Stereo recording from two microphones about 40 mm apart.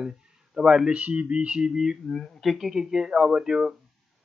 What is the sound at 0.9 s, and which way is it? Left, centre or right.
Speech, right.